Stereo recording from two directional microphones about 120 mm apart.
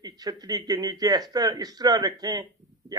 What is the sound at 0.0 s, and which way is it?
A man's voice, 30° right (ahead or behind).